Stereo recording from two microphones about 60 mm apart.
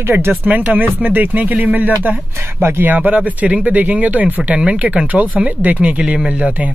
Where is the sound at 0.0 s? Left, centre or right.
Right.